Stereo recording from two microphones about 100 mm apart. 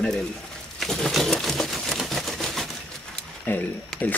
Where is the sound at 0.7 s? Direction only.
5° left (ahead or behind).